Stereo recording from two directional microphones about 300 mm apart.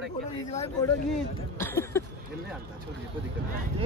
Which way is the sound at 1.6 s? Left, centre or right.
Centre.